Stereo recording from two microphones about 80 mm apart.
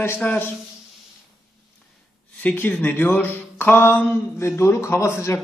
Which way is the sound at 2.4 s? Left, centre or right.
Left.